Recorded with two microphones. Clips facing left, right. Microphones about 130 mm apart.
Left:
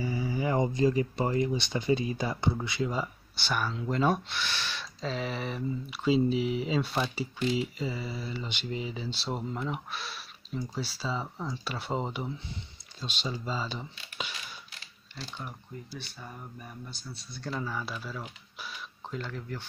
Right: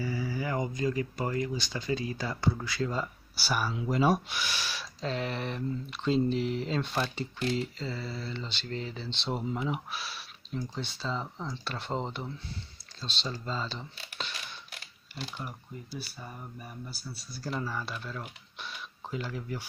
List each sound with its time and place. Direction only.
0.0 s speech: 20° left (ahead or behind)
3.3 s speech: 5° right (ahead or behind)
5.0 s speech: centre (ahead or behind)
14.7 s mechanisms: 60° right (ahead or behind)
16.0 s speech: 5° right (ahead or behind)
18.6 s a sound: centre (ahead or behind)